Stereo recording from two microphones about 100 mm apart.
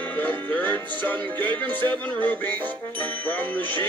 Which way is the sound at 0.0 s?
15° left (ahead or behind).